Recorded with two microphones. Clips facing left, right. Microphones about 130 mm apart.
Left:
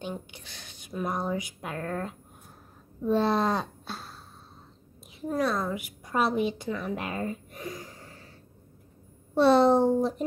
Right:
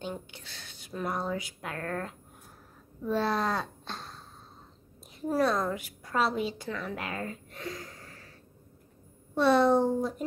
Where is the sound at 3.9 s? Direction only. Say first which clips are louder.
Left 1 dB; 5° left (ahead or behind).